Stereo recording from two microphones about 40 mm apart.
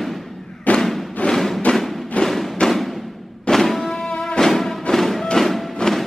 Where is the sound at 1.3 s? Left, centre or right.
Centre.